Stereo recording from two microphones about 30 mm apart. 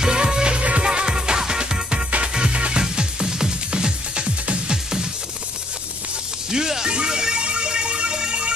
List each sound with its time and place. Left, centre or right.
0.0 s music: right
0.6 s music: right
0.8 s music: right
2.3 s music: right
6.5 s speech: right
6.9 s music: right